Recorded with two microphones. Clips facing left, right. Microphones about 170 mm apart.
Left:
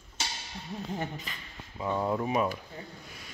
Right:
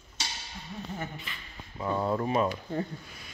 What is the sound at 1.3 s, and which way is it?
Speech, 40° left (ahead or behind).